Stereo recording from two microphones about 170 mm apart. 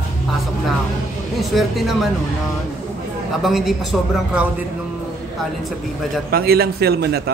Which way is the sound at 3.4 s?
Centre (ahead or behind).